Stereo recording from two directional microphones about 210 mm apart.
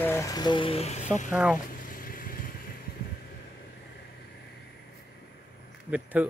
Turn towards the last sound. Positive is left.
turn(degrees=-5)  # may be behind; listen again after turning